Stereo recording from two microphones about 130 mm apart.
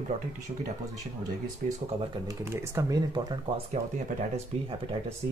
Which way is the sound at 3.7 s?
70° right (ahead or behind).